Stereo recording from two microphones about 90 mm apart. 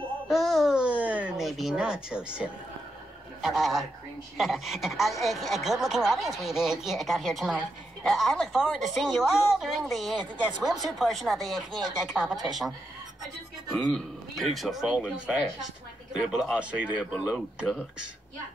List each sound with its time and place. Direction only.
0.3 s music: centre (ahead or behind)
0.7 s a sound: 15° right (ahead or behind)
1.3 s speech: centre (ahead or behind)